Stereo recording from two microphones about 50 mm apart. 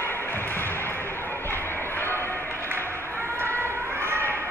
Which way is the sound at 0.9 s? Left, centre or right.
Left.